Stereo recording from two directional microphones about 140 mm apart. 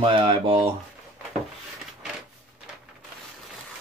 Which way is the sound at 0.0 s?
40° right (ahead or behind).